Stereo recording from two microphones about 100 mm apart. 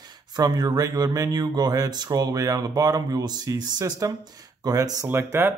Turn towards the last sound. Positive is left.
turn(degrees=-25)  # may be behind; listen again after turning